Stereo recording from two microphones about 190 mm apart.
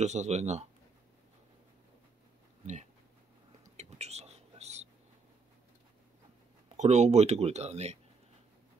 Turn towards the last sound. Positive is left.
turn(degrees=-35)  # may be behind; listen again after turning